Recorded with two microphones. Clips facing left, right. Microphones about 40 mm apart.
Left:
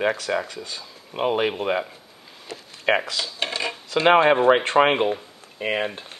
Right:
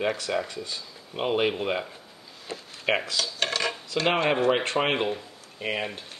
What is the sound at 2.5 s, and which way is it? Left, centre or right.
Speech, right.